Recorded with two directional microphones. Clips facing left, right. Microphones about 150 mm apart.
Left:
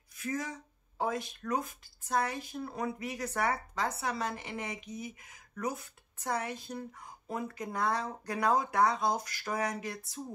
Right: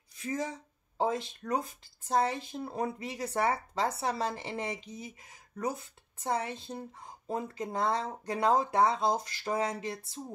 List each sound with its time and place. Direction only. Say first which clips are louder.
0.2 s speech: right 2 dB; 25° right (ahead or behind)